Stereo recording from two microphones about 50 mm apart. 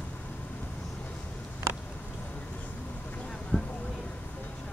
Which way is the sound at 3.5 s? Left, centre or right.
Left.